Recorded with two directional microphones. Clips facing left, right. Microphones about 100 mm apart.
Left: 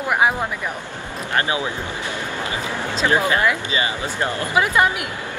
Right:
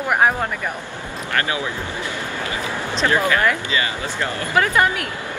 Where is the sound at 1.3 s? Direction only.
20° left (ahead or behind).